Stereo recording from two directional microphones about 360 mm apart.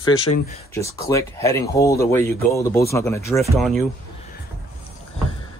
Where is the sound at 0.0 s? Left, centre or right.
Centre.